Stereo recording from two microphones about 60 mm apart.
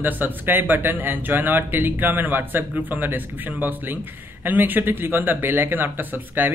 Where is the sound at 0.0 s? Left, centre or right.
Right.